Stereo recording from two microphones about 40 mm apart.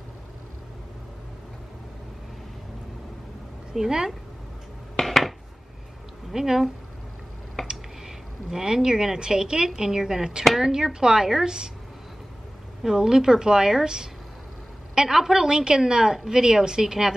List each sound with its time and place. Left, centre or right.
3.7 s a woman's voice: centre
4.9 s dishes: centre
6.3 s a woman's voice: centre
7.6 s a sound: centre
9.7 s a woman's voice: centre
12.8 s a woman's voice: centre